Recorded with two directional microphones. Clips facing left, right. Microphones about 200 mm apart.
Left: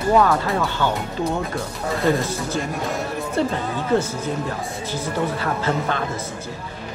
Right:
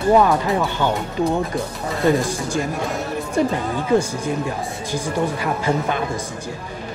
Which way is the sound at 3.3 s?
15° right (ahead or behind).